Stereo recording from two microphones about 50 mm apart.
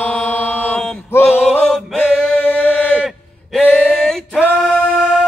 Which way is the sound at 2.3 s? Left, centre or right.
Left.